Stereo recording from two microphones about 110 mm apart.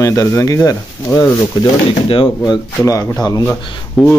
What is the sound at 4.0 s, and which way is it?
Speech, centre (ahead or behind).